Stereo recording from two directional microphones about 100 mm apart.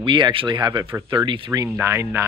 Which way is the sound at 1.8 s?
25° right (ahead or behind).